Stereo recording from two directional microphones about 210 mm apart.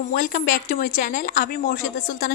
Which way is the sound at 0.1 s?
45° left (ahead or behind).